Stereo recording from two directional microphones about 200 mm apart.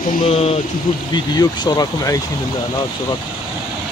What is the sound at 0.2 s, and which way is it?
Speech, 30° left (ahead or behind).